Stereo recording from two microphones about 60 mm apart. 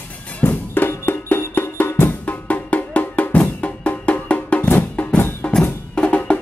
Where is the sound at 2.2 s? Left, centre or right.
Left.